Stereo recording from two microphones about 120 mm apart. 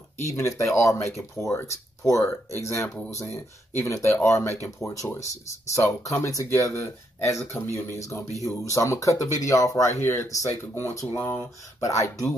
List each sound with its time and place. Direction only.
0.3 s speech: 25° left (ahead or behind)
6.2 s speech: 25° left (ahead or behind)